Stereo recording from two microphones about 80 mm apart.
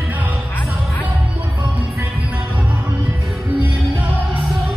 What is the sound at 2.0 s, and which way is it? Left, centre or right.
Music, centre.